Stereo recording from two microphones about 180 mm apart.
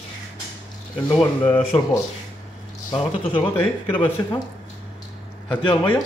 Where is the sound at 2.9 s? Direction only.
30° left (ahead or behind).